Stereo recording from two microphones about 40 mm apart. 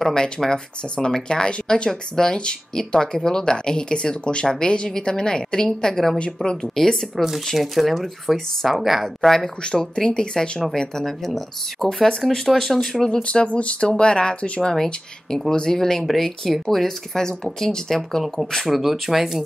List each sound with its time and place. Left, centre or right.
0.0 s a woman's voice: centre
6.1 s a woman's voice: left
7.2 s speech: centre
9.8 s speech: centre
13.0 s a woman's voice: left
14.6 s speech: centre
16.1 s speech: centre
18.7 s speech: centre